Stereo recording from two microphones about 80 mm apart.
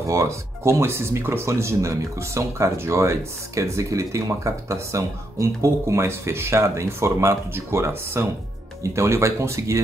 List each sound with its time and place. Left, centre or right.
0.0 s speech: right